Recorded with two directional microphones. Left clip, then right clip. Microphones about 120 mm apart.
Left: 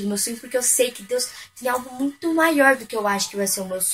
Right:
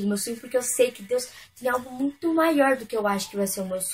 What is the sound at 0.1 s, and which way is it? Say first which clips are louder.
A woman's voice: left 2 dB; 35° right (ahead or behind).